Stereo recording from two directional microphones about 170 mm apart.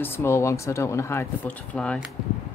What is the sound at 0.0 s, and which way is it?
Speech, 15° left (ahead or behind).